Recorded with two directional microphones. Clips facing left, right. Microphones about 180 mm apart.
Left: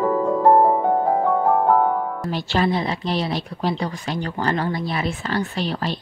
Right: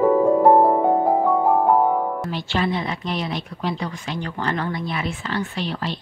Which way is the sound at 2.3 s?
40° left (ahead or behind).